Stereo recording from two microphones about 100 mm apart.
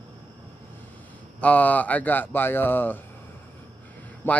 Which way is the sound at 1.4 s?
15° left (ahead or behind).